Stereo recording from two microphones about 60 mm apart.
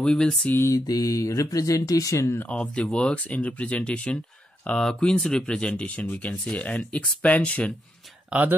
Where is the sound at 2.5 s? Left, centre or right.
Centre.